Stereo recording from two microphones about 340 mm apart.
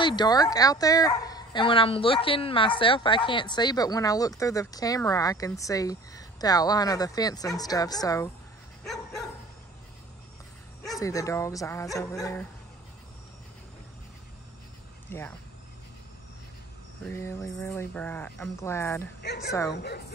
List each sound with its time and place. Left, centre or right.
0.0 s speech: centre
8.8 s dog: centre
10.9 s speech: centre
15.0 s speech: centre
17.0 s speech: centre
19.2 s a woman's voice: left